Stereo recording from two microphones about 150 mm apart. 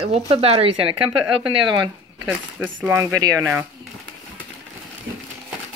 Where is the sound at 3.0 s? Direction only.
25° right (ahead or behind).